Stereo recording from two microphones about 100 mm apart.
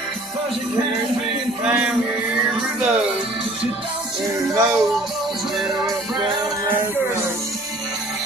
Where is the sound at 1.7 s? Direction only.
10° right (ahead or behind).